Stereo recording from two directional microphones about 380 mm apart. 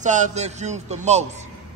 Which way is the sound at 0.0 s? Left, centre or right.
Centre.